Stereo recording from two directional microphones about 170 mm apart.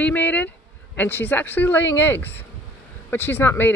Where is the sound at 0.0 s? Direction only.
10° left (ahead or behind).